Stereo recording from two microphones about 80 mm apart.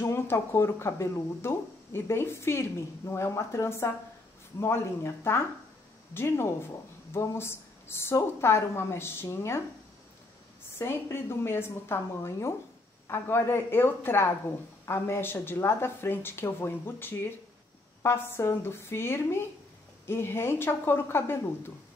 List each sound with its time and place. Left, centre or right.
0.0 s a woman's voice: left
10.8 s a woman's voice: left